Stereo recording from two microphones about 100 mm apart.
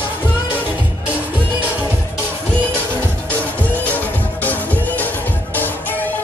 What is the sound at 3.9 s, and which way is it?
Music, 15° left (ahead or behind).